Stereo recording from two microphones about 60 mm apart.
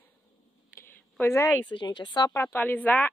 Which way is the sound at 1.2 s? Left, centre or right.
Left.